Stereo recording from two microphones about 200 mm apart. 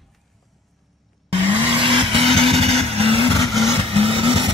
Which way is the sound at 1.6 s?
25° right (ahead or behind).